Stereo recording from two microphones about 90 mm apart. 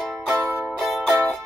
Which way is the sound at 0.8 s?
Centre (ahead or behind).